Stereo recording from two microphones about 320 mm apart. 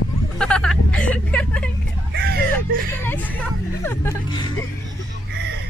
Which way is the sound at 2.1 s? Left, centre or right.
Right.